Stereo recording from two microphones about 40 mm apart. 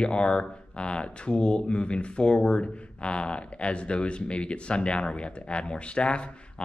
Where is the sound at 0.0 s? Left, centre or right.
Left.